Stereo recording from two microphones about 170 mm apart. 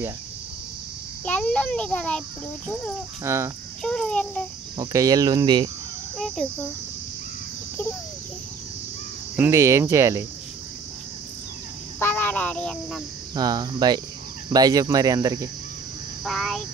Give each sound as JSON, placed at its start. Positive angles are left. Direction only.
{"t": 1.2, "sound": "a child's voice", "side_deg": 5}
{"t": 3.3, "sound": "speech", "side_deg": -15}
{"t": 3.8, "sound": "a child's voice", "side_deg": 5}
{"t": 4.7, "sound": "speech", "side_deg": -20}
{"t": 6.1, "sound": "speech", "side_deg": 0}
{"t": 9.4, "sound": "speech", "side_deg": -15}
{"t": 12.0, "sound": "a sound", "side_deg": 10}
{"t": 13.3, "sound": "speech", "side_deg": -25}
{"t": 16.3, "sound": "a child's voice", "side_deg": 0}